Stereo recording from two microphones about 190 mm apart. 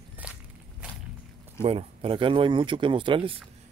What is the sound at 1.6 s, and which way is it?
Speech, 30° right (ahead or behind).